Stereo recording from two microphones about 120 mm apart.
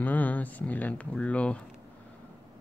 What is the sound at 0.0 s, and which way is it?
Speech, 15° left (ahead or behind).